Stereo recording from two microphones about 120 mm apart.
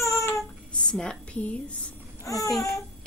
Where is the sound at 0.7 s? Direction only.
10° left (ahead or behind).